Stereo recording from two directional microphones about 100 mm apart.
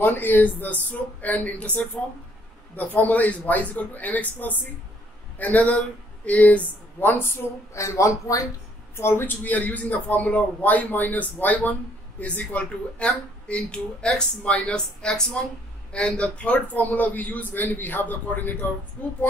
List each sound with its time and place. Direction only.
0.0 s speech: 20° left (ahead or behind)